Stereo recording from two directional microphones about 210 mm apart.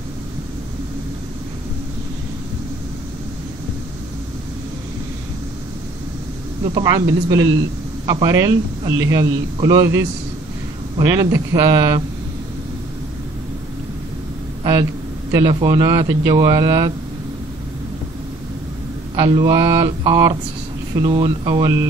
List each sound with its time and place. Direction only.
6.6 s speech: 20° right (ahead or behind)
14.6 s speech: 20° right (ahead or behind)
19.1 s speech: 15° right (ahead or behind)